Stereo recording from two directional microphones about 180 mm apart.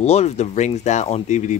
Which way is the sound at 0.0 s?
35° left (ahead or behind).